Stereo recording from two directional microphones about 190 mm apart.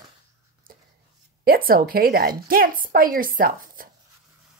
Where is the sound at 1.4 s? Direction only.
50° right (ahead or behind).